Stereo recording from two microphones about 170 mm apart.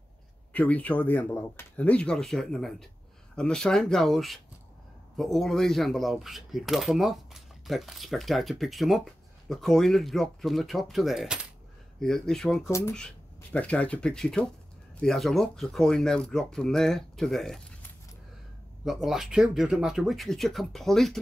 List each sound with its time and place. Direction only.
0.5 s speech: 10° left (ahead or behind)
12.6 s speech: 15° left (ahead or behind)
18.9 s speech: centre (ahead or behind)